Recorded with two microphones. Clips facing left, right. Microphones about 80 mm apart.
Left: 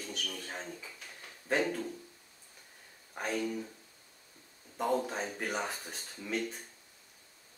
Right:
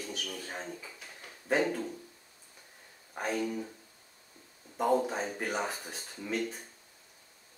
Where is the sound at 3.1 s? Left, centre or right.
Centre.